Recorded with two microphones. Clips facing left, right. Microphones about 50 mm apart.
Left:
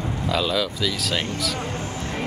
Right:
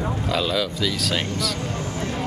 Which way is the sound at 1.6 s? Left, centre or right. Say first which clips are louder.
Right 1 dB; left.